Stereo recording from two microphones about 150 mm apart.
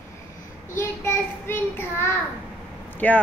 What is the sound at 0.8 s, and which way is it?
A child's voice, 15° left (ahead or behind).